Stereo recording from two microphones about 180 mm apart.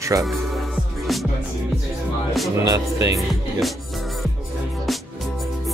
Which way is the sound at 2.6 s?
20° right (ahead or behind).